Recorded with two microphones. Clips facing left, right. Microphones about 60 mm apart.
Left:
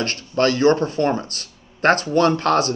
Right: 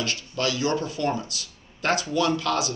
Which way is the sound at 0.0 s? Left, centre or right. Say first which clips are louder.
Left 8 dB; left.